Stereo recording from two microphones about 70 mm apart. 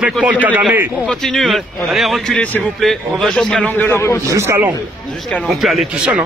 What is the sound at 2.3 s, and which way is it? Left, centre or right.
Speech, left.